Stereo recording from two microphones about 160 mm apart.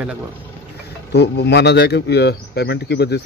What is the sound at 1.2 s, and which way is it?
Speech, 90° left.